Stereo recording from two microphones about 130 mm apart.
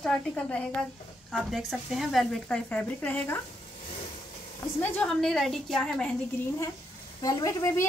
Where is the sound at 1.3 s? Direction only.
Centre (ahead or behind).